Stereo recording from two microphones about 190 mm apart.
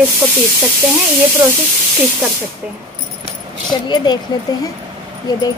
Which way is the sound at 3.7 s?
25° left (ahead or behind).